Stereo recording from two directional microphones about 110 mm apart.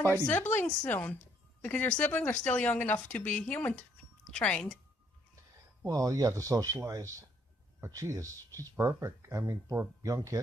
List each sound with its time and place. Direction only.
0.3 s speech: 20° left (ahead or behind)
5.9 s speech: 30° right (ahead or behind)